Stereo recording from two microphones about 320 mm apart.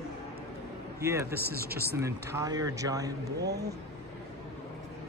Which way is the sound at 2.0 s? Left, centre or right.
Centre.